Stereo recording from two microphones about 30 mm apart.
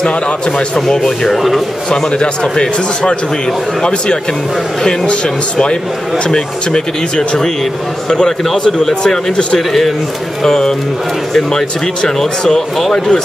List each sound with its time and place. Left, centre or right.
0.0 s speech: left
0.7 s speech: centre
1.9 s speech: left
5.0 s speech: left; by 9.2 s centre
9.6 s speech: centre
10.4 s speech: centre